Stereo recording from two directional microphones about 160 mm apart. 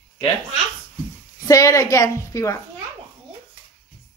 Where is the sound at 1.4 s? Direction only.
20° left (ahead or behind).